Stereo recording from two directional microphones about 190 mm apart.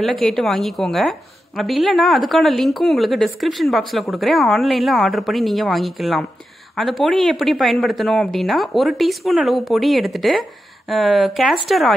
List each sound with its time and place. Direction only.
0.0 s a woman's voice: centre (ahead or behind)